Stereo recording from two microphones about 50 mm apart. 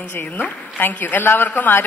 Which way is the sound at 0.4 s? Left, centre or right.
Left.